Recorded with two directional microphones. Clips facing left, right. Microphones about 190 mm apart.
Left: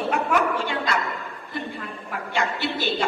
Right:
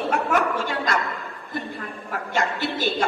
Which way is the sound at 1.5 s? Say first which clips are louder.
Right 1 dB; 45° right (ahead or behind).